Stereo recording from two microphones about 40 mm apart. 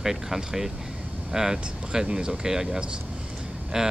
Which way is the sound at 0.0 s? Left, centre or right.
Centre.